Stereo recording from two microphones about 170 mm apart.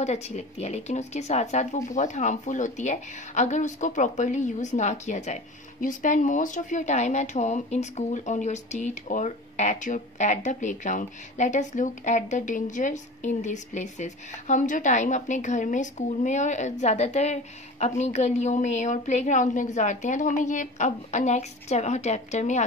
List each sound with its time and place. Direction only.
0.0 s speech: 40° left (ahead or behind)